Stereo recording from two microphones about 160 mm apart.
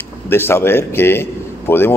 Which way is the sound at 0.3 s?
15° left (ahead or behind).